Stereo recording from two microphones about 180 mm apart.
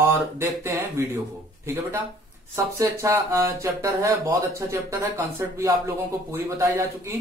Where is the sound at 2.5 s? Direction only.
15° right (ahead or behind).